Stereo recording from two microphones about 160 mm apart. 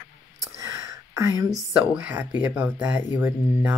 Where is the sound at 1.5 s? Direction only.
5° right (ahead or behind).